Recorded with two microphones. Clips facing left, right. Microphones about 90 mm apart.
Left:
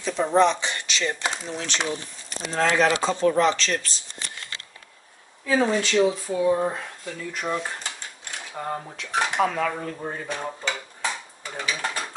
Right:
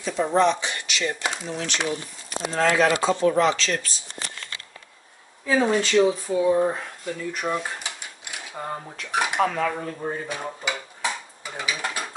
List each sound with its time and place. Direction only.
0.0 s speech: 10° right (ahead or behind)
0.6 s speech: 25° left (ahead or behind)
2.2 s speech: centre (ahead or behind)
5.7 s speech: 10° right (ahead or behind)
7.3 s dishes: 10° right (ahead or behind)
9.4 s dishes: centre (ahead or behind)